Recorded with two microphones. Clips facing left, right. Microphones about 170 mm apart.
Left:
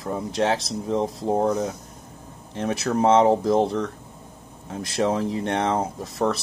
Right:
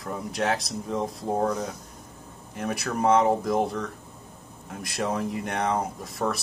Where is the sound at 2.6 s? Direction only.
30° left (ahead or behind).